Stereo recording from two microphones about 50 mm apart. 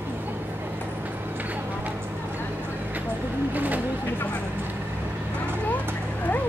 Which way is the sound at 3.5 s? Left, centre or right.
Right.